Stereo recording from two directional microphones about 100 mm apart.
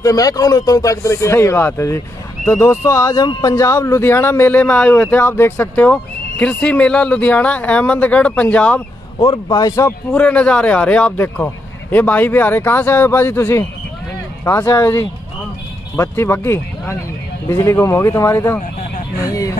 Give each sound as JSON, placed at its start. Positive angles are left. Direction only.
{"t": 0.0, "sound": "a man's voice", "side_deg": 35}
{"t": 9.2, "sound": "speech", "side_deg": 45}
{"t": 10.1, "sound": "a man's voice", "side_deg": 10}
{"t": 16.0, "sound": "speech", "side_deg": 25}